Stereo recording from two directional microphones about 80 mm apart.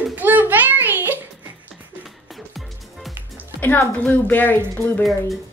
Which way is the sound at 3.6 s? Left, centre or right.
Left.